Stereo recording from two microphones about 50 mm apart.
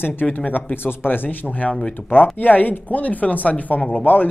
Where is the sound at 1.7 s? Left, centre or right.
Centre.